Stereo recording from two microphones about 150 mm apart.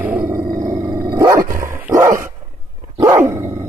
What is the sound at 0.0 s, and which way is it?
Growling, 10° right (ahead or behind).